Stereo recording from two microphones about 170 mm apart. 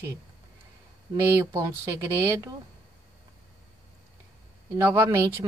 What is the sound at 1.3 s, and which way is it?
Speech, 15° right (ahead or behind).